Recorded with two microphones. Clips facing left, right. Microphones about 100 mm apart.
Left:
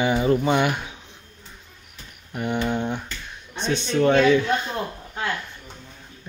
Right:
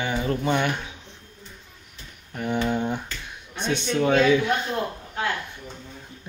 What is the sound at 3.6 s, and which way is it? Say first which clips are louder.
Speech: left 2 dB; 15° right (ahead or behind).